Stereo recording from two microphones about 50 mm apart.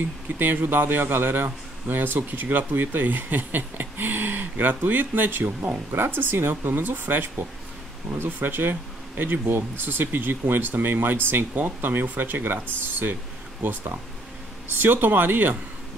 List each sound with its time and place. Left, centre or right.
0.4 s a man's voice: right
8.1 s speech: centre
8.4 s speech: right
13.6 s speech: right